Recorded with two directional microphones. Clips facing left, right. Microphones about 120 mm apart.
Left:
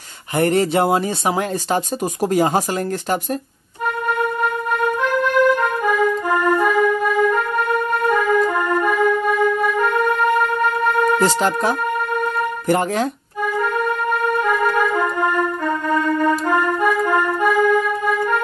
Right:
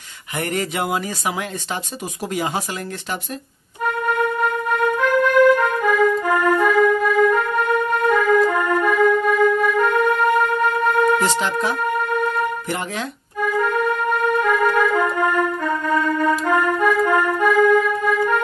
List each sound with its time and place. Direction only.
0.4 s speech: 30° left (ahead or behind)
2.3 s speech: 40° left (ahead or behind)
5.1 s music: 10° right (ahead or behind)
5.6 s music: 15° left (ahead or behind)
11.1 s speech: 35° left (ahead or behind)
14.4 s music: 15° left (ahead or behind)
16.8 s accordion: 15° left (ahead or behind)
17.4 s music: 10° left (ahead or behind)